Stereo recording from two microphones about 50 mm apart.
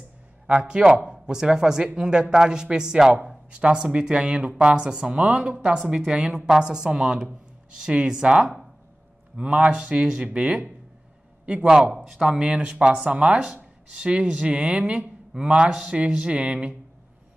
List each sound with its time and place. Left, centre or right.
0.5 s a woman's voice: right
5.5 s a woman's voice: right
11.7 s a woman's voice: centre